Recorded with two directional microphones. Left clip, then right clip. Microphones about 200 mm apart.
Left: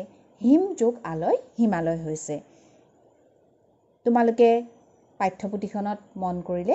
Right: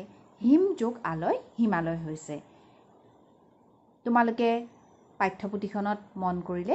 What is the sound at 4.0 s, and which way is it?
A woman's voice, 25° left (ahead or behind).